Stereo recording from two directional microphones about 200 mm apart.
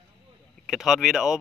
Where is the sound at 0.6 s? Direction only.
Centre (ahead or behind).